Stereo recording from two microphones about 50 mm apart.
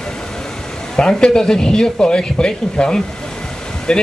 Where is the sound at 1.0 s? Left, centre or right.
Centre.